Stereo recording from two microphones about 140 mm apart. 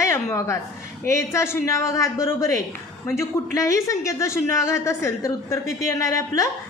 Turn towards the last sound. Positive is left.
turn(degrees=20)  # may be behind; listen again after turning